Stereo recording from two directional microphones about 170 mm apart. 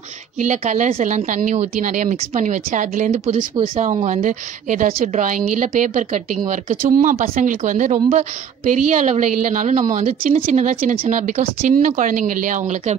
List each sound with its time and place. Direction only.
0.4 s a woman's voice: 45° right (ahead or behind)
3.3 s speech: 30° right (ahead or behind)
3.8 s a woman's voice: 45° right (ahead or behind)